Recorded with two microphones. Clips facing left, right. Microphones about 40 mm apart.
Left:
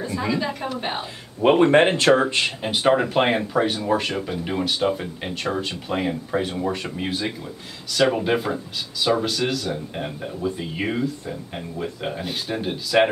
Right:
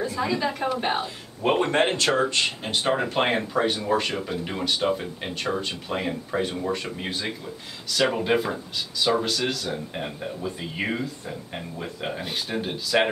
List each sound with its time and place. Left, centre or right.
0.0 s speech: centre
1.5 s speech: left; by 13.1 s centre